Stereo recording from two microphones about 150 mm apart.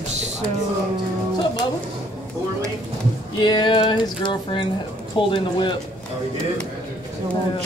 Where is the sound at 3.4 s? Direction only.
30° left (ahead or behind).